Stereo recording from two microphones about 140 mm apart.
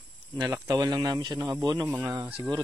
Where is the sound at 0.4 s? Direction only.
25° right (ahead or behind).